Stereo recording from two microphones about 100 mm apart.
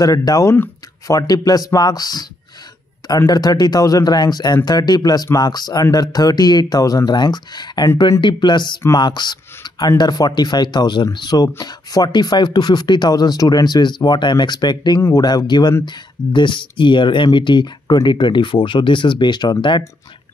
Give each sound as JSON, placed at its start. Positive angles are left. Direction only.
{"t": 0.0, "sound": "speech", "side_deg": 40}
{"t": 3.3, "sound": "speech", "side_deg": 40}
{"t": 15.0, "sound": "speech", "side_deg": 25}
{"t": 15.2, "sound": "speech", "side_deg": 45}